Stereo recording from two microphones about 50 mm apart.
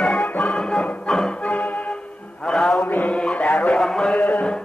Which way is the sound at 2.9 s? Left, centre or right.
Left.